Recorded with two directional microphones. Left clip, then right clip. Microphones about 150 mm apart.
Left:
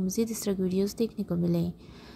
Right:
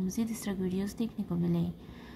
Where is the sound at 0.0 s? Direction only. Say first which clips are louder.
Left 6 dB; 35° left (ahead or behind).